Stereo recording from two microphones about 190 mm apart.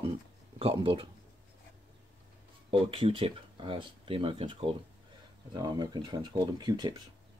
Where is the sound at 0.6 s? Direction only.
30° right (ahead or behind).